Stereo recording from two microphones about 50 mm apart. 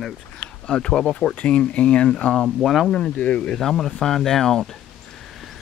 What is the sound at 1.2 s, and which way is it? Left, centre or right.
Speech, left.